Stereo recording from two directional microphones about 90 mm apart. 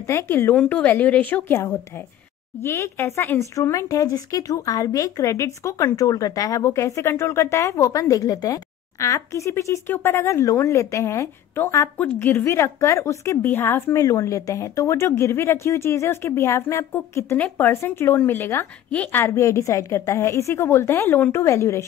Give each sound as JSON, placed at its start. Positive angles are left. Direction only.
{"t": 0.0, "sound": "speech", "side_deg": 30}
{"t": 2.6, "sound": "speech", "side_deg": 30}
{"t": 12.4, "sound": "speech", "side_deg": 30}
{"t": 14.0, "sound": "speech", "side_deg": 40}
{"t": 18.9, "sound": "a woman's voice", "side_deg": 15}
{"t": 19.2, "sound": "speech", "side_deg": 30}